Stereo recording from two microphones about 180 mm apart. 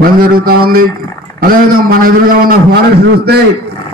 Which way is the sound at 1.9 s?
55° right (ahead or behind).